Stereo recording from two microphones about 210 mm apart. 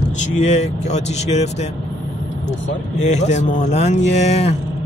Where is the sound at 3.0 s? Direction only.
35° left (ahead or behind).